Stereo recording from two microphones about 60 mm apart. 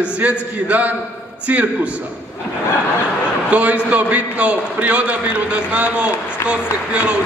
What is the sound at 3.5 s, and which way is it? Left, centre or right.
A man's voice, right.